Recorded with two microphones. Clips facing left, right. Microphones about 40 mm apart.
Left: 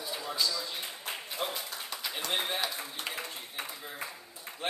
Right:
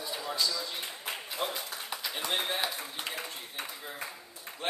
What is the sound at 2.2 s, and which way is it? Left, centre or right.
Speech, centre.